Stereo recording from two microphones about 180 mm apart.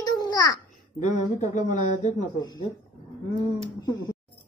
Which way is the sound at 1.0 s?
45° left (ahead or behind).